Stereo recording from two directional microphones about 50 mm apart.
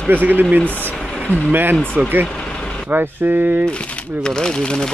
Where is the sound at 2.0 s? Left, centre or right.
Right.